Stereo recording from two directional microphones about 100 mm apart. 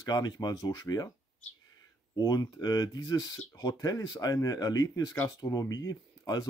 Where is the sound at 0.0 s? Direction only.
45° left (ahead or behind).